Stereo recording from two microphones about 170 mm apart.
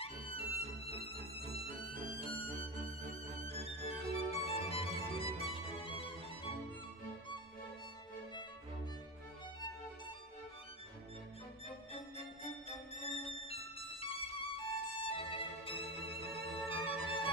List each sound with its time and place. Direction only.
0.0 s music: 35° left (ahead or behind)
3.8 s music: 35° left (ahead or behind)
12.6 s music: 35° left (ahead or behind)